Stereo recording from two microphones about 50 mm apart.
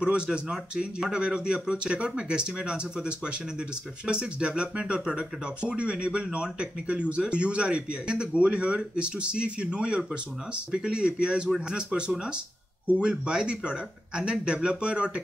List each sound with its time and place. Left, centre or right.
0.0 s speech: centre